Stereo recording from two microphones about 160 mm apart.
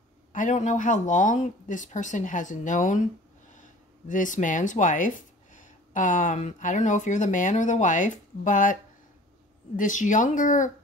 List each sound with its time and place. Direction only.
0.3 s speech: 50° left (ahead or behind)
4.1 s speech: 55° left (ahead or behind)
9.8 s speech: 55° left (ahead or behind)